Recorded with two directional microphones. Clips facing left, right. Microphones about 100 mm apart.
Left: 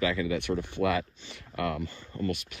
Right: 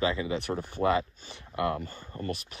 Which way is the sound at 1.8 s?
45° right (ahead or behind).